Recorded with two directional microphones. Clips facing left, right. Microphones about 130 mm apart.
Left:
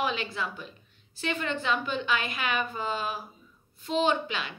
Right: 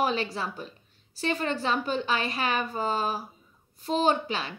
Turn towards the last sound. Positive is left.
turn(degrees=-35)  # may be behind; listen again after turning